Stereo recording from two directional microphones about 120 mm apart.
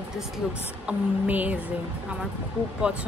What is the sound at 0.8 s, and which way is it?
Speech, 10° right (ahead or behind).